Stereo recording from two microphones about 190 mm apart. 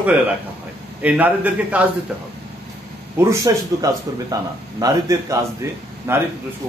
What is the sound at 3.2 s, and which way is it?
Speech, 15° right (ahead or behind).